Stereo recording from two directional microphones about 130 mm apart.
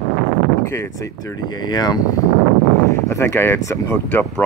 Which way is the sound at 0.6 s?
20° left (ahead or behind).